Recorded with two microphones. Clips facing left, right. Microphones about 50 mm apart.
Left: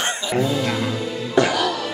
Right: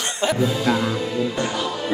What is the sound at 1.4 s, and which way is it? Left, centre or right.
Speech, left.